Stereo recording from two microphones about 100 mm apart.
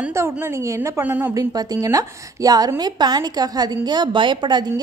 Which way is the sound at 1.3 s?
40° right (ahead or behind).